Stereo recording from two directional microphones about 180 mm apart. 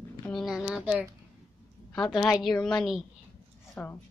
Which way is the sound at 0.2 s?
Centre (ahead or behind).